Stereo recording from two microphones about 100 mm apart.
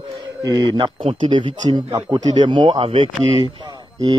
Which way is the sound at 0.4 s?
40° right (ahead or behind).